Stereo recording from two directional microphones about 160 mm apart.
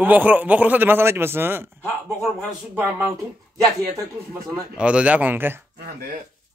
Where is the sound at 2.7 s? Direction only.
15° right (ahead or behind).